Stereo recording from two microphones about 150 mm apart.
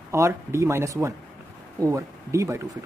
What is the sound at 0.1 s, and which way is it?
Speech, 20° right (ahead or behind).